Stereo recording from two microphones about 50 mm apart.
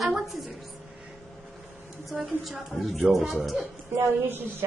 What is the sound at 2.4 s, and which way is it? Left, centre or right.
A woman's voice, centre.